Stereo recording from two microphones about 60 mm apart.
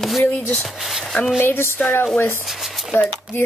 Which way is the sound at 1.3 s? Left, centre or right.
Left.